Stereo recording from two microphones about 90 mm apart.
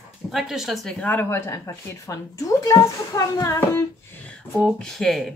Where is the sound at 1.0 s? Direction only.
25° left (ahead or behind).